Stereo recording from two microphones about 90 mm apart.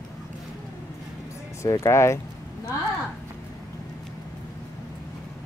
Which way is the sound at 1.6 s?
35° left (ahead or behind).